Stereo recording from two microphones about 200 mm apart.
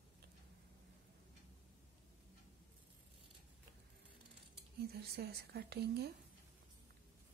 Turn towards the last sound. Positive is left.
turn(degrees=-55)  # may be behind; listen again after turning